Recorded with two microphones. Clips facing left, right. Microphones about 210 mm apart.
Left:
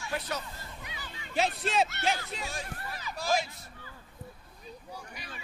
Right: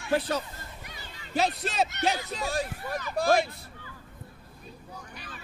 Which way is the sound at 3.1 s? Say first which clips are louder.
Right 6 dB; 55° right (ahead or behind).